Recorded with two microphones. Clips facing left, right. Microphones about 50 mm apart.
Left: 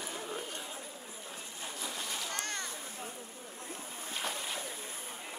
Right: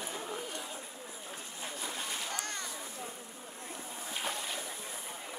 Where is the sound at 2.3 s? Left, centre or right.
Left.